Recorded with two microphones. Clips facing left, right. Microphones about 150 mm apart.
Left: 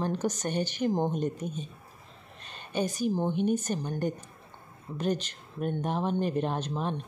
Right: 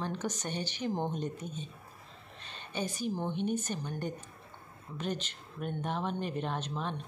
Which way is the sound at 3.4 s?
40° left (ahead or behind).